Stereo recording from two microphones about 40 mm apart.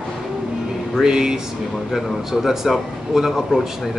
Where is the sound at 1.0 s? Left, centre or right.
Centre.